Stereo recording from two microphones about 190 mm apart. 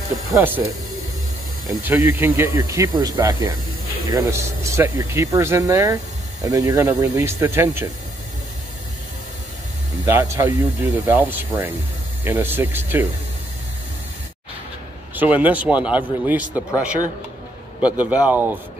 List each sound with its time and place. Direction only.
0.3 s speech: 10° right (ahead or behind)
1.8 s speech: 15° right (ahead or behind)
10.0 s speech: 15° right (ahead or behind)
15.1 s speech: 10° right (ahead or behind)
17.7 s speech: 5° right (ahead or behind)